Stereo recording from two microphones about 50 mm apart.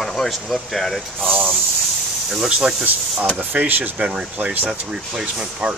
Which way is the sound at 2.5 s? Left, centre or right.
Centre.